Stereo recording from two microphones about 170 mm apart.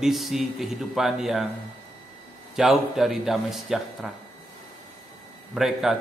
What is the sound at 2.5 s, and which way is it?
A man's voice, centre (ahead or behind).